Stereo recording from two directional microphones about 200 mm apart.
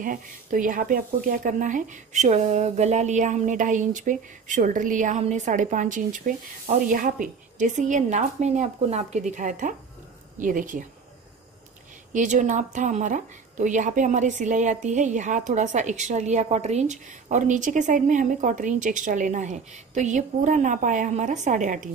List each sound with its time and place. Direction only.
0.0 s a woman's voice: 40° right (ahead or behind)
12.1 s a woman's voice: 40° right (ahead or behind)